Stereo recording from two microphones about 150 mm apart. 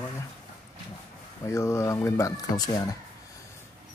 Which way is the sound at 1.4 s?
20° left (ahead or behind).